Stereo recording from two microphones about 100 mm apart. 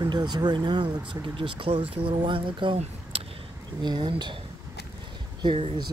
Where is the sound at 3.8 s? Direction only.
45° right (ahead or behind).